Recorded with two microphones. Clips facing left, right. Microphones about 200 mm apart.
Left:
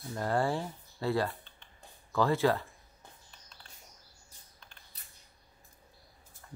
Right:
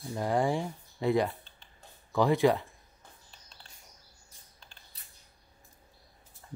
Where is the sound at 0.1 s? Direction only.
15° right (ahead or behind).